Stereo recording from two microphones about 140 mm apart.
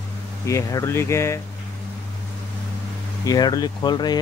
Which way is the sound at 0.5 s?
20° left (ahead or behind).